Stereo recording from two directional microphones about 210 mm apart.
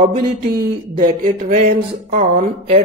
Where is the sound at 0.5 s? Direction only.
40° right (ahead or behind).